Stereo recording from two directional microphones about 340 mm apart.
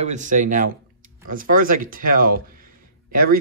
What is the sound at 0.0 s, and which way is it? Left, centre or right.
Speech, right.